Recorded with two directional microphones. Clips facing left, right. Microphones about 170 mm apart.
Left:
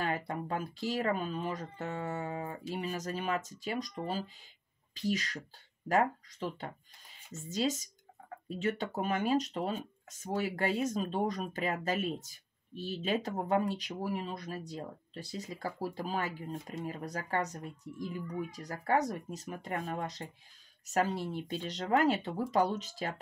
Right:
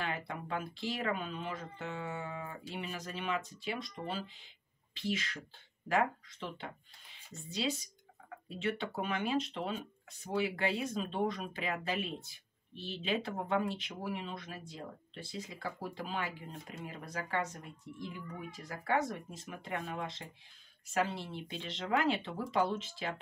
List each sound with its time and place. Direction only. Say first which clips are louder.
0.0 s speech: left 4 dB; 40° left (ahead or behind)